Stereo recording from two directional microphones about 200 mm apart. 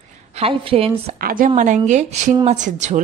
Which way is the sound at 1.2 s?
45° right (ahead or behind).